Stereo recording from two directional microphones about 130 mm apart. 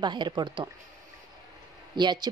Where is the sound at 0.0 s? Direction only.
35° right (ahead or behind).